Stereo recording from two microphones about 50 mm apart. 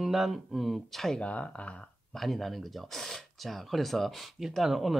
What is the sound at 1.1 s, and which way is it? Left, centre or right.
Speech, left.